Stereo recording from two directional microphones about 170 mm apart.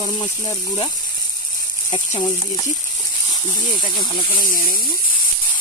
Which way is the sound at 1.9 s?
25° left (ahead or behind).